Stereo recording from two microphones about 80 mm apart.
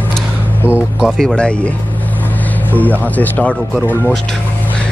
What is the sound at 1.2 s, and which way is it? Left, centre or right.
Speech, centre.